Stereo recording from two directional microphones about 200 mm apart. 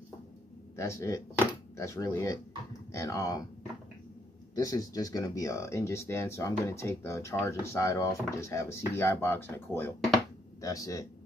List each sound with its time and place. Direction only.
0.7 s speech: 15° left (ahead or behind)
4.6 s speech: 15° left (ahead or behind)